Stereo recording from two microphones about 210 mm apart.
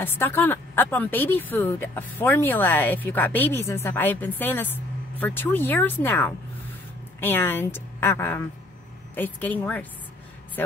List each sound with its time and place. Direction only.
0.0 s speech: 10° left (ahead or behind)